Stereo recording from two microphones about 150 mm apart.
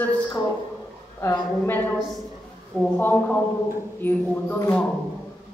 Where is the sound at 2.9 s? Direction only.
10° left (ahead or behind).